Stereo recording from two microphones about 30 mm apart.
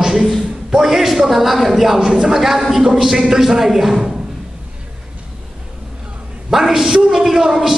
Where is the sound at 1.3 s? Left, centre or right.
Centre.